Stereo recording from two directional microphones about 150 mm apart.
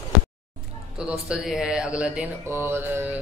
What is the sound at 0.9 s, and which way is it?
Speech, 5° right (ahead or behind).